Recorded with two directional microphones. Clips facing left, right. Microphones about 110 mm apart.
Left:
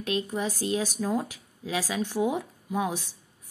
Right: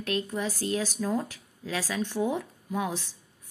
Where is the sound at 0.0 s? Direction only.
20° left (ahead or behind).